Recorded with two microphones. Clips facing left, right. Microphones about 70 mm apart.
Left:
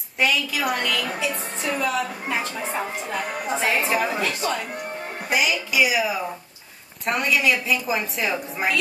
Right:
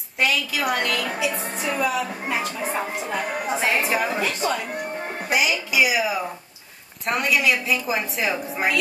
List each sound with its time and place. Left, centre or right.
0.2 s a woman's voice: centre
5.3 s a woman's voice: centre